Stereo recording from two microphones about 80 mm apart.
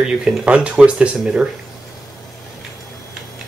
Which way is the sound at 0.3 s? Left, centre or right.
Centre.